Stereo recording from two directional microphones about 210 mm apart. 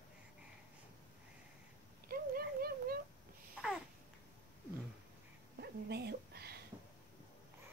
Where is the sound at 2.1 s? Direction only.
45° right (ahead or behind).